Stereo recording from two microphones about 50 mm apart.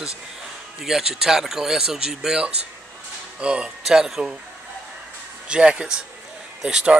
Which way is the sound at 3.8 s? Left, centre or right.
Centre.